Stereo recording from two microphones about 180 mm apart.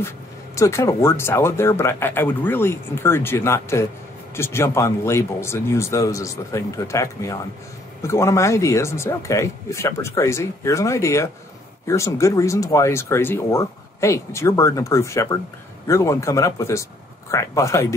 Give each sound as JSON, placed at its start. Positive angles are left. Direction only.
{"t": 0.6, "sound": "speech", "side_deg": 15}